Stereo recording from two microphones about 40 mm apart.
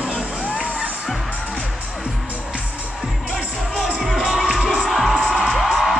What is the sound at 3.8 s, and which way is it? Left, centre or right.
Music, centre.